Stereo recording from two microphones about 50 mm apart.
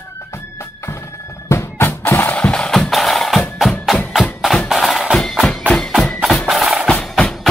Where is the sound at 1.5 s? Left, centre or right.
Left.